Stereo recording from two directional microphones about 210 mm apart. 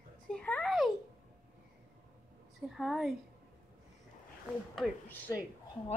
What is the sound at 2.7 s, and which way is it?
Speech, centre (ahead or behind).